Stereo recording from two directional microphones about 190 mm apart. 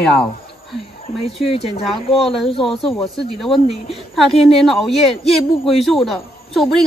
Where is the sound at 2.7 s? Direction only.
30° left (ahead or behind).